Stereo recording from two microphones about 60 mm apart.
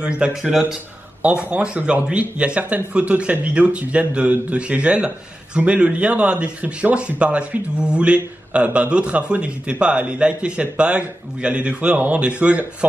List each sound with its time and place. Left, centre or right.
0.0 s speech: centre
0.4 s speech: centre
1.2 s a man's voice: centre